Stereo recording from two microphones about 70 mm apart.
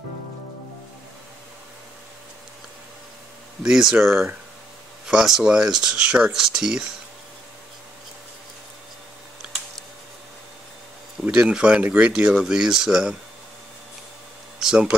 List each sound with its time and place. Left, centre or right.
3.6 s speech: centre
11.2 s speech: centre
14.6 s speech: centre